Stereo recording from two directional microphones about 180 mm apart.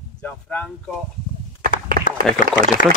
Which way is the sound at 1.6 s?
55° right (ahead or behind).